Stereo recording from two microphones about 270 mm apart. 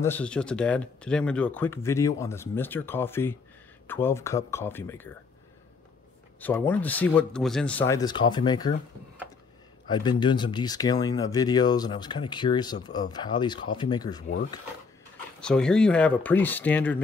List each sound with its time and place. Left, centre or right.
0.0 s speech: centre
6.4 s speech: centre
9.8 s speech: centre
15.4 s speech: centre